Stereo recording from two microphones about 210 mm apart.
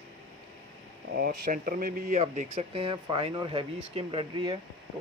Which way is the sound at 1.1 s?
40° right (ahead or behind).